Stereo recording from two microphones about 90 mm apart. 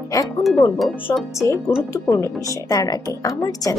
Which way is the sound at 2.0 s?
35° left (ahead or behind).